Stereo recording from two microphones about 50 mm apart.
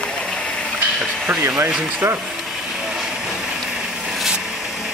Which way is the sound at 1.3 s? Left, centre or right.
Right.